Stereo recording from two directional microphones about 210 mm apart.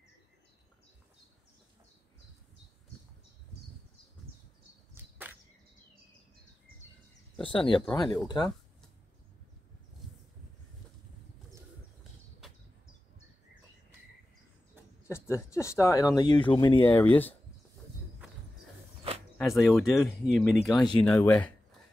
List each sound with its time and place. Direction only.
4.9 s a sound: 10° right (ahead or behind)
7.4 s speech: 25° left (ahead or behind)
12.0 s a sound: centre (ahead or behind)
15.0 s speech: 10° left (ahead or behind)
16.9 s speech: 10° left (ahead or behind)
19.3 s speech: centre (ahead or behind)
21.0 s speech: 10° left (ahead or behind)